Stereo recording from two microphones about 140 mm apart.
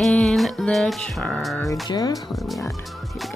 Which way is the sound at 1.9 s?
30° left (ahead or behind).